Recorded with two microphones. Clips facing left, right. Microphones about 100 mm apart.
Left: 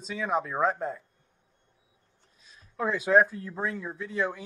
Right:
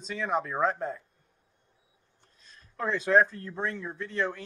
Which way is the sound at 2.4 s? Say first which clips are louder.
Left 3 dB; 5° left (ahead or behind).